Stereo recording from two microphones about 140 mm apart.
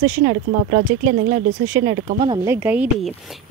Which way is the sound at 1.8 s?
65° right (ahead or behind).